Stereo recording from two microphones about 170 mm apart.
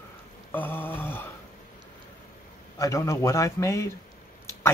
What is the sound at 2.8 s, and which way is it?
Speech, 15° left (ahead or behind).